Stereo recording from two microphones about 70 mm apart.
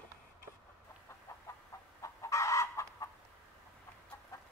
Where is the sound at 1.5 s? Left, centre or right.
Left.